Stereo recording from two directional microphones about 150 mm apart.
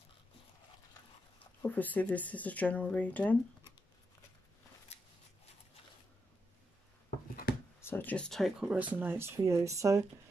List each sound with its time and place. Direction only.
1.6 s speech: 10° left (ahead or behind)
7.8 s speech: 15° left (ahead or behind)
8.6 s speech: 10° right (ahead or behind)